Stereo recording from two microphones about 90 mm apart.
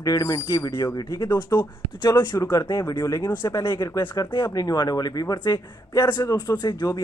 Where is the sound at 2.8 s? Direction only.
45° left (ahead or behind).